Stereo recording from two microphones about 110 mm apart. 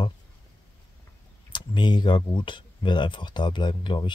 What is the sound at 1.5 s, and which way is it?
Speech, 45° left (ahead or behind).